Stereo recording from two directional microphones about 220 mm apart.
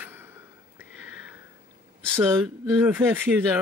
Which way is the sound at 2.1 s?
10° right (ahead or behind).